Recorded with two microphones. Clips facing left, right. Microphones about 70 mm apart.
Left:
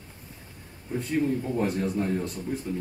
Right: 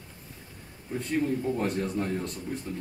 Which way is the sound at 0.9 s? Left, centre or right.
Centre.